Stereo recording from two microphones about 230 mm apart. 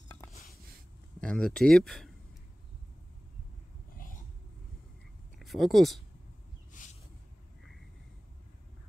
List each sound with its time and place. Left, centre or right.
1.2 s speech: centre
5.4 s speech: centre
6.7 s a sound: left